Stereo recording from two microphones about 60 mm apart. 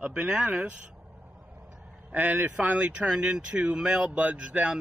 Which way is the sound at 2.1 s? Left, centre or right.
Right.